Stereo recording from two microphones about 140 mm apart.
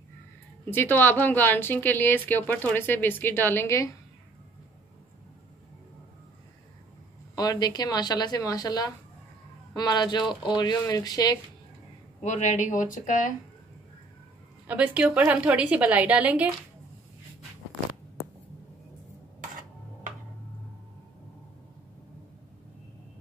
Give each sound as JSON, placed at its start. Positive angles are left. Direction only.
{"t": 0.7, "sound": "a woman's voice", "side_deg": 15}
{"t": 7.3, "sound": "speech", "side_deg": 25}
{"t": 12.2, "sound": "speech", "side_deg": 60}
{"t": 14.7, "sound": "a woman's voice", "side_deg": -10}